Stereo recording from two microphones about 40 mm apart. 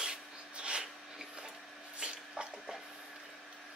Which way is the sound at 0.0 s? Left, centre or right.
Right.